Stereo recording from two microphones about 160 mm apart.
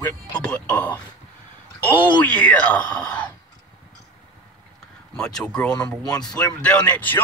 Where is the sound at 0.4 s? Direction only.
5° left (ahead or behind).